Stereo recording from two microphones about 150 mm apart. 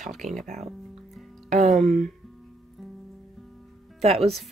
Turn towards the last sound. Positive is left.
turn(degrees=-45)  # may be behind; listen again after turning